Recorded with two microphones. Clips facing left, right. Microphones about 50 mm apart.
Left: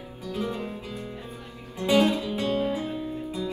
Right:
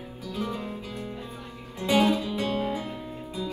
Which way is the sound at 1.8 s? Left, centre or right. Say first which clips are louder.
Left 1 dB; left.